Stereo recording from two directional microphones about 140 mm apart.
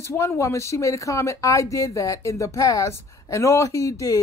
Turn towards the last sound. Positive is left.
turn(degrees=25)  # may be behind; listen again after turning